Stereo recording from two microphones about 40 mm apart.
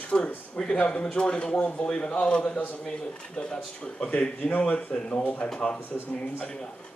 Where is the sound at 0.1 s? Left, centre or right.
Left.